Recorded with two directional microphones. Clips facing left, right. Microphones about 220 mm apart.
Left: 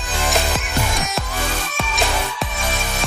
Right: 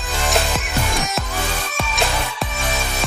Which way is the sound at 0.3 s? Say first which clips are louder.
Right 1 dB; centre (ahead or behind).